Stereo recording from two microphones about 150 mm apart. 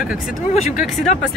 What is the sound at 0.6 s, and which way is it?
Speech, 50° left (ahead or behind).